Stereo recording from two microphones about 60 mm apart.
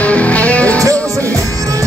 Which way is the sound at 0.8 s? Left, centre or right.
Right.